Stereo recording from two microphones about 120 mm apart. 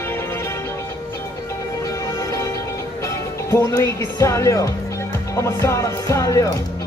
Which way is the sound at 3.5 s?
25° left (ahead or behind).